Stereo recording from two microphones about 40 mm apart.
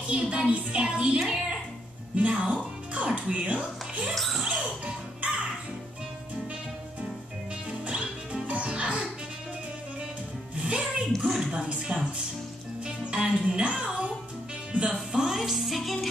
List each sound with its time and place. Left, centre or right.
0.0 s music: right
1.2 s a woman's voice: centre
2.1 s speech: right
4.1 s music: centre
7.8 s music: right
10.5 s music: right
11.2 s a sound: centre
11.5 s music: right
11.8 s music: centre; by 14.9 s right
15.1 s music: centre